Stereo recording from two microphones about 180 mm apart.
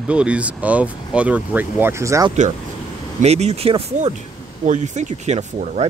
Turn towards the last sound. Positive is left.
turn(degrees=-40)  # may be behind; listen again after turning